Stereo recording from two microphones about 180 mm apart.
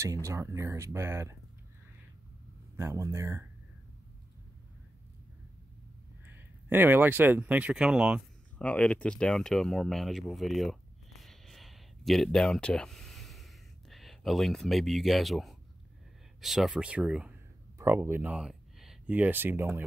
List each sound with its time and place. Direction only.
0.0 s speech: 15° right (ahead or behind)
2.7 s speech: 15° right (ahead or behind)
6.2 s speech: 10° right (ahead or behind)
8.5 s speech: 5° left (ahead or behind); by 19.8 s 15° right (ahead or behind)